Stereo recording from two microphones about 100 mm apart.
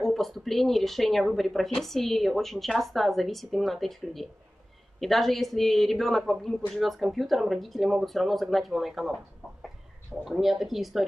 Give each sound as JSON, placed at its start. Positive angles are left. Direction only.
{"t": 0.0, "sound": "a woman's voice", "side_deg": 0}
{"t": 10.2, "sound": "a woman's voice", "side_deg": -5}